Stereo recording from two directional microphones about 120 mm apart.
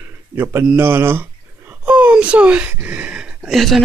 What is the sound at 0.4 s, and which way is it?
Speech, 20° right (ahead or behind).